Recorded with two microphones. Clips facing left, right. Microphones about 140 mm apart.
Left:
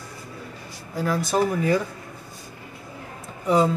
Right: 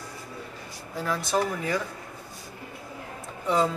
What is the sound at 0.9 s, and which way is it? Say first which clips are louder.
Speech: left 4 dB; 5° left (ahead or behind).